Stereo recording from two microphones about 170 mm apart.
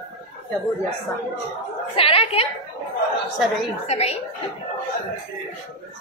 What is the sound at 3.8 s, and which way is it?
Speech, 40° left (ahead or behind).